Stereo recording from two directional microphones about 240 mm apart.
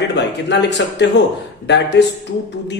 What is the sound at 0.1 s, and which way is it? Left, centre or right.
A man's voice, left.